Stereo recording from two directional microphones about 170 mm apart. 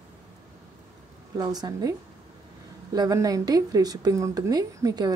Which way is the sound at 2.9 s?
20° right (ahead or behind).